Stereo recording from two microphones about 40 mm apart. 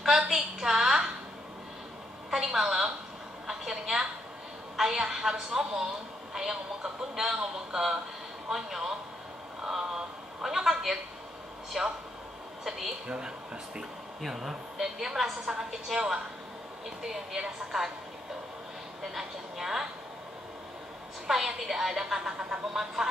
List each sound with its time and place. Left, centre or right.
0.3 s a sound: centre
2.3 s a sound: centre
4.7 s a woman's voice: centre
14.2 s a woman's voice: centre
19.1 s a woman's voice: centre
21.3 s a woman's voice: centre